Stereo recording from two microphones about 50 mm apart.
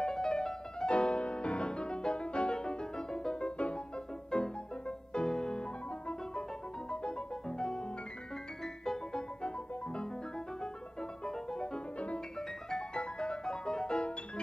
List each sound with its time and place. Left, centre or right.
0.0 s music: centre